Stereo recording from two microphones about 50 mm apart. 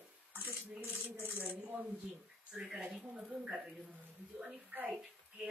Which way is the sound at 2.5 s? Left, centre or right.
Right.